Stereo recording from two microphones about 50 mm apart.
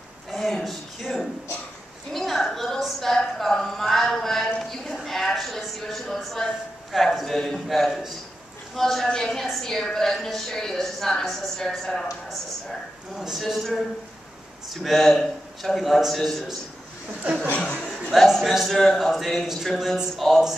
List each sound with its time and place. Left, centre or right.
0.3 s a woman's voice: centre
4.6 s a sound: centre
6.9 s a man's voice: centre
7.3 s a man's voice: centre
13.1 s a man's voice: centre
13.4 s a man's voice: centre
17.2 s speech: right
18.1 s a man's voice: centre